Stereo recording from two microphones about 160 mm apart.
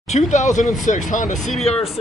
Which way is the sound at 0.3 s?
50° left (ahead or behind).